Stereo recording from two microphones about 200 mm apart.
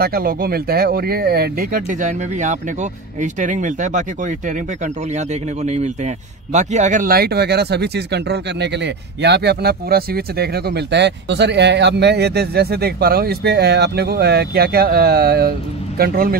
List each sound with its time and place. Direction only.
0.0 s a man's voice: 50° right (ahead or behind)